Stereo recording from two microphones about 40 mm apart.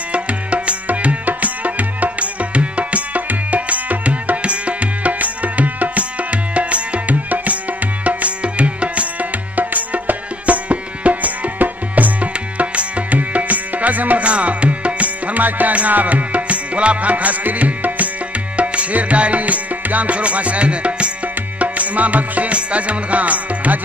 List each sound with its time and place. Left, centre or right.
0.1 s music: right
14.2 s music: right